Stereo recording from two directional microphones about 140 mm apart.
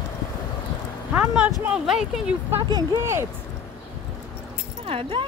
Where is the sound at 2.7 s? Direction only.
25° right (ahead or behind).